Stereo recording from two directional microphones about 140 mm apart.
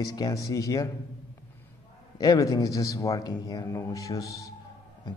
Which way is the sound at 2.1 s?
25° left (ahead or behind).